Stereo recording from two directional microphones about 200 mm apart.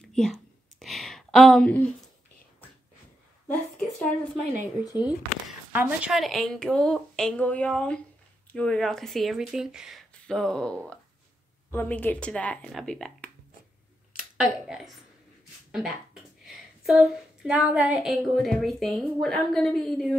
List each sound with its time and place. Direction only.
0.0 s whispering: 5° left (ahead or behind)
0.7 s a sound: centre (ahead or behind)
3.4 s speech: 5° left (ahead or behind)
5.7 s a woman's voice: 10° right (ahead or behind)